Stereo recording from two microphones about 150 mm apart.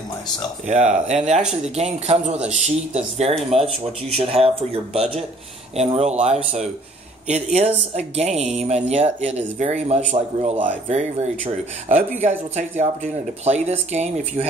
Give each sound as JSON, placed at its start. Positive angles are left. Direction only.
{"t": 0.7, "sound": "speech", "side_deg": -50}